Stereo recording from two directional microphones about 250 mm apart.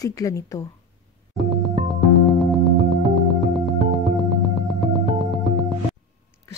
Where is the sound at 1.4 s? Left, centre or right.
Centre.